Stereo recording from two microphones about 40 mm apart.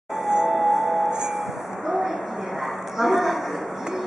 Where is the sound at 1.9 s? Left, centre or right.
Centre.